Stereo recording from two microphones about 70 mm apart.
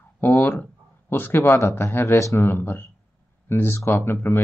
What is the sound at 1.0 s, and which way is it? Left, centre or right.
Speech, left.